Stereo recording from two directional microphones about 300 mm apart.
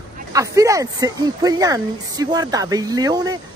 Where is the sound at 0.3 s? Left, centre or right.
Centre.